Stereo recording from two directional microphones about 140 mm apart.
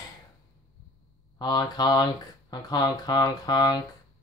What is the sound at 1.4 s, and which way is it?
Speech, 30° left (ahead or behind).